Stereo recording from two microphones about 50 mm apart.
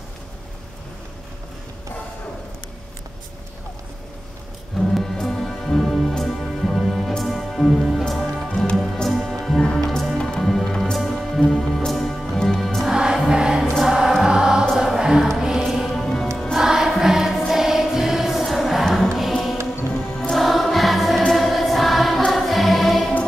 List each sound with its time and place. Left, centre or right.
4.7 s music: centre
9.6 s music: centre
9.8 s music: centre
10.1 s music: centre
12.9 s music: centre
15.9 s music: centre
16.5 s music: centre
20.2 s choir: centre
21.3 s music: centre